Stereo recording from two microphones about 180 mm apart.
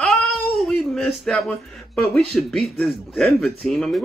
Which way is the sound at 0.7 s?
5° left (ahead or behind).